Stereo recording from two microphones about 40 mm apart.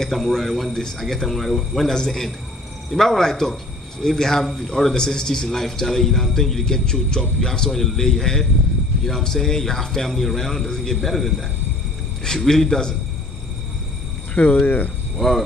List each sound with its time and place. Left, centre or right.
0.1 s a man's voice: centre
14.3 s speech: left
15.1 s speech: centre